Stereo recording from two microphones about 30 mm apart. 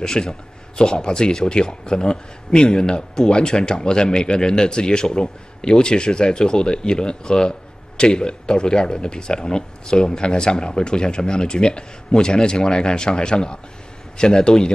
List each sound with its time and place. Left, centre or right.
0.0 s speech: left